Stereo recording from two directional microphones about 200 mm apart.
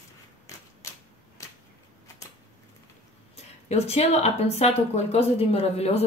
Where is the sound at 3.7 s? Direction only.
30° left (ahead or behind).